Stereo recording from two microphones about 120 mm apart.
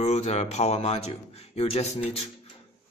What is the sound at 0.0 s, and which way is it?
A man's voice, 65° left (ahead or behind).